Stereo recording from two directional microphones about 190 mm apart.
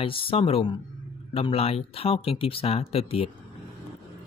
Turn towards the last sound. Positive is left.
turn(degrees=30)  # may be behind; listen again after turning